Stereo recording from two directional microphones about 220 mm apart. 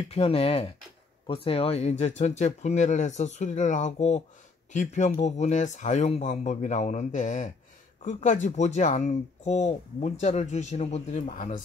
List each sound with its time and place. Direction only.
0.1 s speech: 25° left (ahead or behind)